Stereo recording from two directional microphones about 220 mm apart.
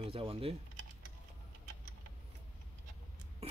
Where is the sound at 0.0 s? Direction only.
25° right (ahead or behind).